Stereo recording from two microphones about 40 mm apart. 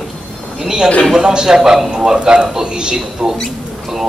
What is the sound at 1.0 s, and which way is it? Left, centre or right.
A man's voice, centre.